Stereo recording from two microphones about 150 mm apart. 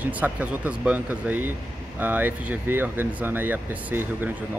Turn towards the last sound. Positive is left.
turn(degrees=-10)  # may be behind; listen again after turning